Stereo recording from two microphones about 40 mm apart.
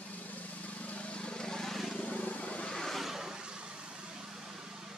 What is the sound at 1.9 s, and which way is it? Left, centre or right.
Vehicle, left.